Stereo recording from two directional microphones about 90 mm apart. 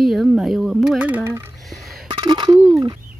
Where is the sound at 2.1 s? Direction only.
55° right (ahead or behind).